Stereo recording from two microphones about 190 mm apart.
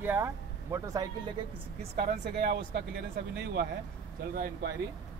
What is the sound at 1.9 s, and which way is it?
Speech, 55° right (ahead or behind).